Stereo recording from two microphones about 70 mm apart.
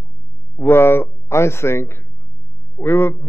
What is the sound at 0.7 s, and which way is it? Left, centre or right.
A man's voice, left.